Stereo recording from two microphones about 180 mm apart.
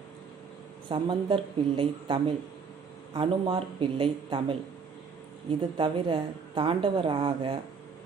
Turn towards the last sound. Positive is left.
turn(degrees=-30)  # may be behind; listen again after turning